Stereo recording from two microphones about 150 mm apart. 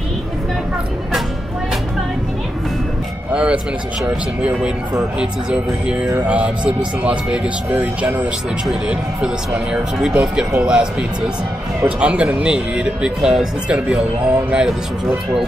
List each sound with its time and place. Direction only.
3.3 s music: 5° right (ahead or behind)
4.4 s speech: 5° right (ahead or behind)
9.7 s speech: 5° right (ahead or behind)